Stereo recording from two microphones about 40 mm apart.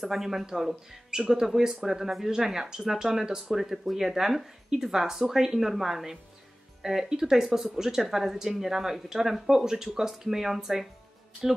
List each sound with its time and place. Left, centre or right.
0.1 s speech: centre